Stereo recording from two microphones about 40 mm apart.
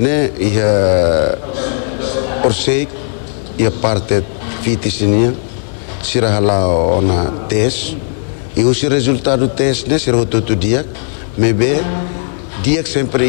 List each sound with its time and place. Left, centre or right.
0.0 s a man's voice: centre